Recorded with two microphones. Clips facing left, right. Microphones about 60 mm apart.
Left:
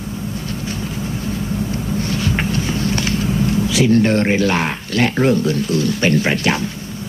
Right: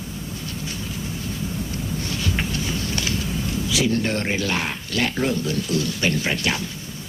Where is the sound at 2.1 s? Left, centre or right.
Left.